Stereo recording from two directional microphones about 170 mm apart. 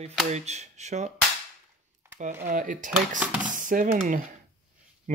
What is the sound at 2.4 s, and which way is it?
Speech, 50° right (ahead or behind).